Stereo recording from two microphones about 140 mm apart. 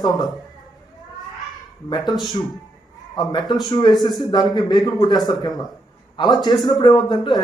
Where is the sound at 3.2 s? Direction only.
30° left (ahead or behind).